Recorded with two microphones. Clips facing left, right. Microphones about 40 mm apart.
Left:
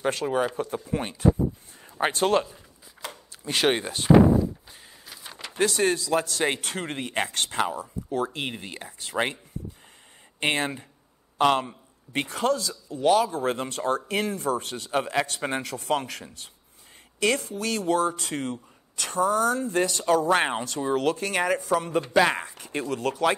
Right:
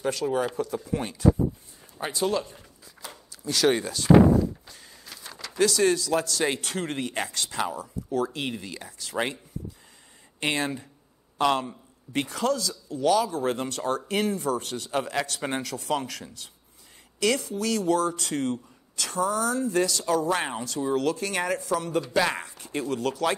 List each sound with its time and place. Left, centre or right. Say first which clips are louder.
0.0 s speech: left 1 dB; left
2.0 s speech: left 4 dB; left
5.0 s a sound: even; centre
5.3 s speech: right 1 dB; left
10.4 s speech: left 1 dB; left
22.5 s speech: even; left